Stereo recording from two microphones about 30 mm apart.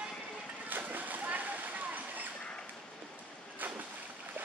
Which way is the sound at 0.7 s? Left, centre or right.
Right.